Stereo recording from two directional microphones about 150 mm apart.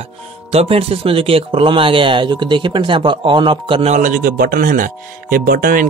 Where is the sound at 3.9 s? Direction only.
60° right (ahead or behind).